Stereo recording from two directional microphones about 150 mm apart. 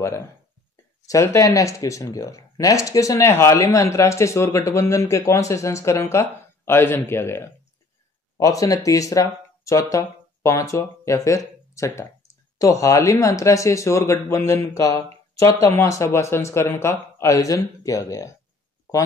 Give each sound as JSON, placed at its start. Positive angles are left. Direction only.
{"t": 1.0, "sound": "speech", "side_deg": 20}